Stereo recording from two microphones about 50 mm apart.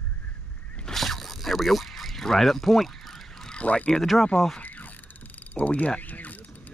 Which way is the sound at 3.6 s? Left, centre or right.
Left.